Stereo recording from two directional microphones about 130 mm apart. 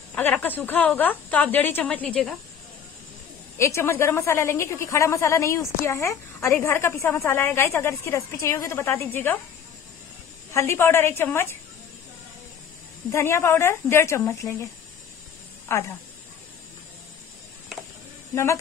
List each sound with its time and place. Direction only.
0.1 s speech: 15° left (ahead or behind)
3.5 s a woman's voice: 20° left (ahead or behind)
10.5 s a woman's voice: 20° left (ahead or behind)
13.1 s a woman's voice: 20° left (ahead or behind)
15.7 s a woman's voice: 20° left (ahead or behind)
18.3 s speech: 20° left (ahead or behind)